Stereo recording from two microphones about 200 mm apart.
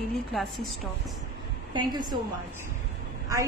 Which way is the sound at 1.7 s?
20° right (ahead or behind).